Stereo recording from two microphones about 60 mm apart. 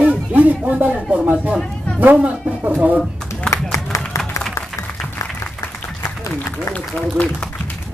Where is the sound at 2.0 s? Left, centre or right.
Right.